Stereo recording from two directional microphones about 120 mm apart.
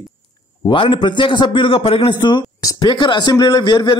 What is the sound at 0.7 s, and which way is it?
A man's voice, 45° left (ahead or behind).